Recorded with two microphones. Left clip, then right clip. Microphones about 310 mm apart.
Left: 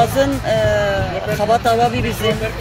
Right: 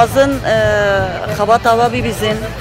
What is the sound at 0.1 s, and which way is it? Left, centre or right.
Speech, centre.